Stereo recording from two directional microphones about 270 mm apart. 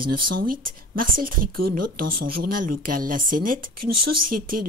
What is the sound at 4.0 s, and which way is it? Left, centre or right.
Speech, right.